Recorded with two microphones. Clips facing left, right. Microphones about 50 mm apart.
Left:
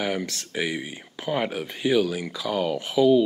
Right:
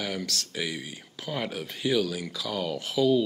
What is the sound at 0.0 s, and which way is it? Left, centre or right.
Speech, left.